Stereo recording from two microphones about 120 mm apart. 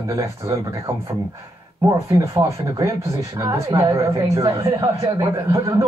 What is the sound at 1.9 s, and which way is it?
Speech, 25° right (ahead or behind).